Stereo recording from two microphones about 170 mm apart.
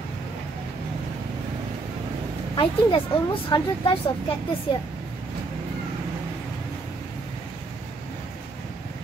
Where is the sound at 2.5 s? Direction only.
30° left (ahead or behind).